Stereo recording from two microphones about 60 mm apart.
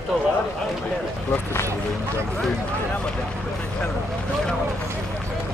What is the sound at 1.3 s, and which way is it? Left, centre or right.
Speech, left.